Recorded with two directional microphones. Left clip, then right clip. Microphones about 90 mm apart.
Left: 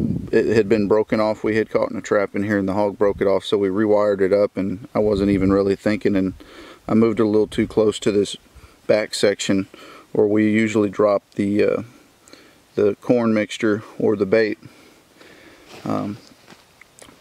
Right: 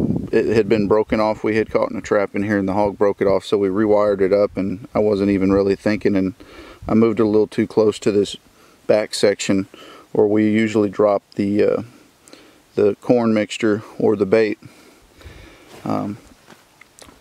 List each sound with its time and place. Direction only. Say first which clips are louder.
0.3 s speech: even; 5° right (ahead or behind)
14.3 s speech: right 1 dB; 50° right (ahead or behind)
15.8 s speech: right 1 dB; 5° right (ahead or behind)